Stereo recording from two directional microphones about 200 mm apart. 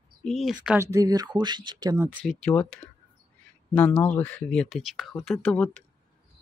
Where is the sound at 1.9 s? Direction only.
10° right (ahead or behind).